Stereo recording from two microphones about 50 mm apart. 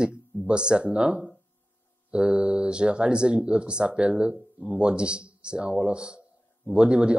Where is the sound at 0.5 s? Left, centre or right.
Centre.